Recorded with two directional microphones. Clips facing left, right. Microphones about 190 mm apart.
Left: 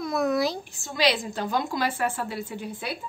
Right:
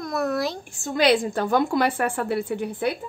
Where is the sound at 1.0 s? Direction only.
55° right (ahead or behind).